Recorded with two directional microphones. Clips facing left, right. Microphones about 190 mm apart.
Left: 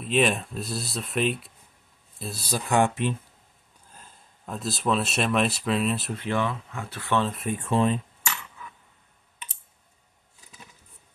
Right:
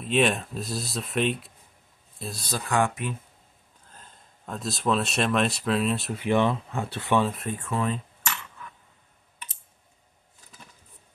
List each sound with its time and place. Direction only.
0.0 s speech: centre (ahead or behind)
2.5 s speech: 20° left (ahead or behind)
3.9 s speech: 5° left (ahead or behind)
6.2 s speech: 20° right (ahead or behind)
6.7 s speech: 30° right (ahead or behind)
7.1 s speech: 10° right (ahead or behind)
7.6 s speech: 25° left (ahead or behind)